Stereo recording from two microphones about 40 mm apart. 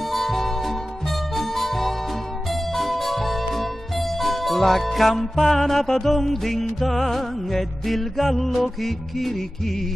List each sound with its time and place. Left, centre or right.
0.1 s music: centre